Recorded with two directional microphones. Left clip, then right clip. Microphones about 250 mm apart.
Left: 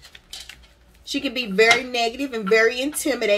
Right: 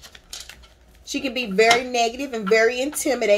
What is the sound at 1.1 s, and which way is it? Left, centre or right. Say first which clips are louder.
A woman's voice: even; centre.